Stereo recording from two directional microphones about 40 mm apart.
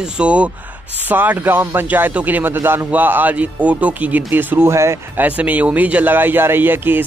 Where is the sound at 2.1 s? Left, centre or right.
Right.